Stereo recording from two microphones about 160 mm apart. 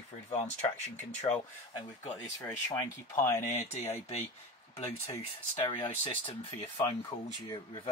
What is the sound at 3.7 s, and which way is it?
Speech, 40° left (ahead or behind).